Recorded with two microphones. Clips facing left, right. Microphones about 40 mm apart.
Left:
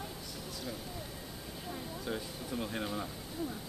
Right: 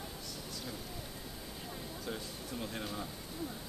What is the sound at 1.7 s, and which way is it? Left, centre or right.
Speech, centre.